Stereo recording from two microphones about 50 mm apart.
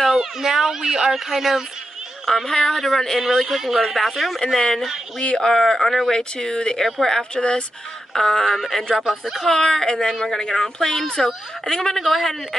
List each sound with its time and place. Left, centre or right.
0.2 s speech: centre
2.2 s a woman's voice: centre
3.2 s speech: centre
5.2 s speech: left
5.5 s speech: centre
6.1 s a woman's voice: centre
9.2 s speech: centre
9.5 s a woman's voice: centre